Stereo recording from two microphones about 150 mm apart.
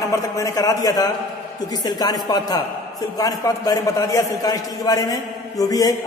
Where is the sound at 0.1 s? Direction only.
20° left (ahead or behind).